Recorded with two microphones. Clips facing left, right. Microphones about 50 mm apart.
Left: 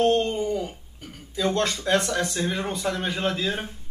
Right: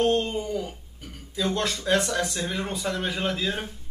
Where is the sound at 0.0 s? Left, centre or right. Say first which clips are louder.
Left 2 dB; centre.